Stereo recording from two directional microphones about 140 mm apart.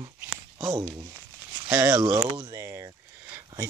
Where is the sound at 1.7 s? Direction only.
25° right (ahead or behind).